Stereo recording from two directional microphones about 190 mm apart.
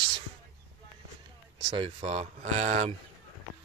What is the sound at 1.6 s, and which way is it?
Speech, 25° right (ahead or behind).